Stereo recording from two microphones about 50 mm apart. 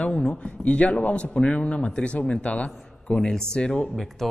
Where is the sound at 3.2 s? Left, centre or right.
Centre.